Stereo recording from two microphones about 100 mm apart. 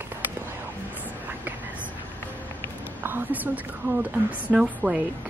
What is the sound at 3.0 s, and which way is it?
A woman's voice, 20° right (ahead or behind).